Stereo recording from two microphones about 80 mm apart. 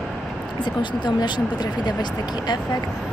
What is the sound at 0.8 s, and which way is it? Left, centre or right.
Speech, left.